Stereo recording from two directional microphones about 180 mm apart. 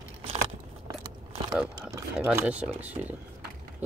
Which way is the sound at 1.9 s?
15° right (ahead or behind).